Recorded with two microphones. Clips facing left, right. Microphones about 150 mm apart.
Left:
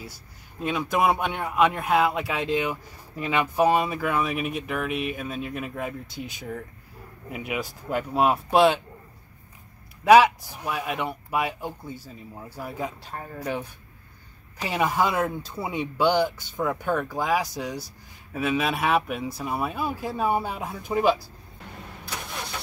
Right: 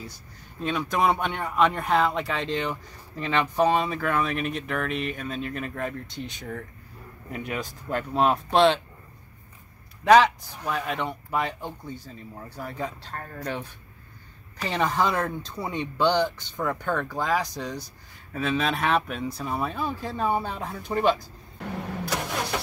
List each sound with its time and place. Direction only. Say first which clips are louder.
0.6 s speech: left 1 dB; 10° left (ahead or behind)
10.0 s speech: left 2 dB; 10° left (ahead or behind)
21.6 s vehicle: right 9 dB; 75° right (ahead or behind)